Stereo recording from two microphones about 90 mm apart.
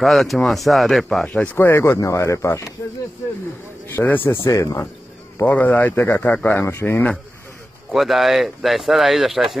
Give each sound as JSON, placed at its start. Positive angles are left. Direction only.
{"t": 0.0, "sound": "speech", "side_deg": 0}
{"t": 3.8, "sound": "speech", "side_deg": 25}
{"t": 4.5, "sound": "speech", "side_deg": 35}
{"t": 5.4, "sound": "speech", "side_deg": 20}
{"t": 6.5, "sound": "speech", "side_deg": 25}
{"t": 7.9, "sound": "speech", "side_deg": 0}